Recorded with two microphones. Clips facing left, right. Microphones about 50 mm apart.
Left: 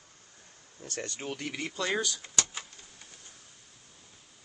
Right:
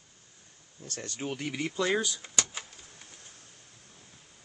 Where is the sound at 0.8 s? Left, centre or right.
Left.